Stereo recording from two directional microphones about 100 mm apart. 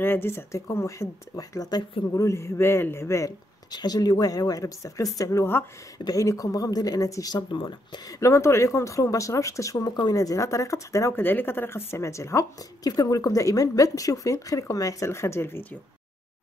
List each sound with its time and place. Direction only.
0.0 s speech: 20° left (ahead or behind)
3.7 s speech: 40° left (ahead or behind)
7.5 s speech: 55° left (ahead or behind)
8.1 s speech: 30° left (ahead or behind)